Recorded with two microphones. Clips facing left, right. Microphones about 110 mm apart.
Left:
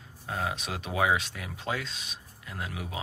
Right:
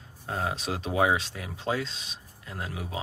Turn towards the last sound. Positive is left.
turn(degrees=-30)  # may be behind; listen again after turning